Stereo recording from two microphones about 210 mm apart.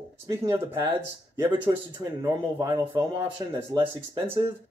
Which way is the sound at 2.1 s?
15° right (ahead or behind).